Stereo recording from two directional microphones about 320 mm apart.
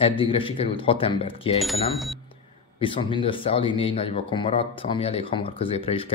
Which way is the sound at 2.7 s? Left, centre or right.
Centre.